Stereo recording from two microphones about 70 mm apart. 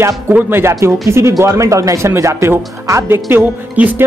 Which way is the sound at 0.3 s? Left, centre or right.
Right.